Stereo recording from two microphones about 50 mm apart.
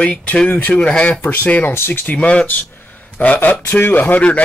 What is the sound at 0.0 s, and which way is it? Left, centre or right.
Speech, left.